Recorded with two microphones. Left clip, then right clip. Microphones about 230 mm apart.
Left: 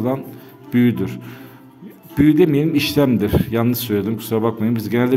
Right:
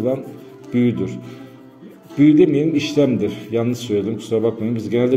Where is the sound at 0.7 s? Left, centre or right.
Left.